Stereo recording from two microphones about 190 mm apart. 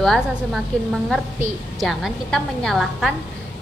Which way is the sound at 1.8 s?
Centre (ahead or behind).